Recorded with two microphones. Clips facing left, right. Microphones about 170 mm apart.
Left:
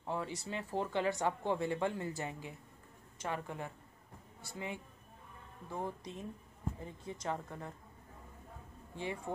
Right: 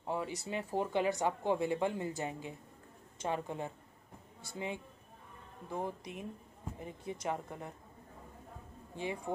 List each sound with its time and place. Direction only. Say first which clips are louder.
0.0 s a woman's voice: right 2 dB; 15° right (ahead or behind)
5.7 s speech: right 2 dB; 15° right (ahead or behind)
8.9 s speech: right 2 dB; 15° right (ahead or behind)